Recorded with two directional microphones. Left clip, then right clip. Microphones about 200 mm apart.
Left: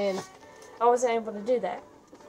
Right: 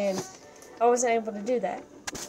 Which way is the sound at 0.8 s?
15° right (ahead or behind).